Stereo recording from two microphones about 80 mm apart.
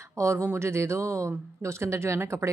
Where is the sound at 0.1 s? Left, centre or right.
Right.